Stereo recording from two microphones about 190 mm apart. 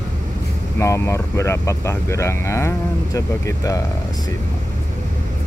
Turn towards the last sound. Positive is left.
turn(degrees=15)  # may be behind; listen again after turning